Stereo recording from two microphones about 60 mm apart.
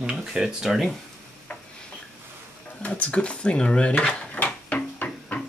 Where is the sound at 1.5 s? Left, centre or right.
Left.